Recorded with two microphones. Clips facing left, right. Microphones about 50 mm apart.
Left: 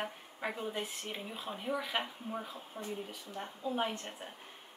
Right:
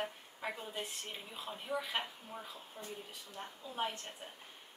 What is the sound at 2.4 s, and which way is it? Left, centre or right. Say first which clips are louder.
Speech: left 5 dB; left.